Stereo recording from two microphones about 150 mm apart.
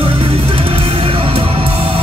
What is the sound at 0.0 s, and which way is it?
Music, 35° right (ahead or behind).